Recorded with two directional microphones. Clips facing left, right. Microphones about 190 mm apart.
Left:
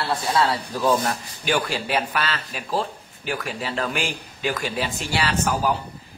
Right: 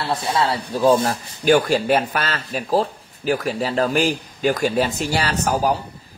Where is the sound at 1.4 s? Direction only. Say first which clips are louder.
Right 9 dB; 40° right (ahead or behind).